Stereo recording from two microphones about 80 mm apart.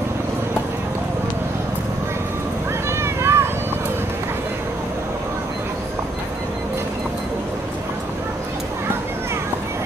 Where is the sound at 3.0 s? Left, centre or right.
Right.